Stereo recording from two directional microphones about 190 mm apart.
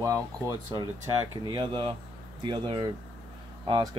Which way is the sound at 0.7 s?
20° right (ahead or behind).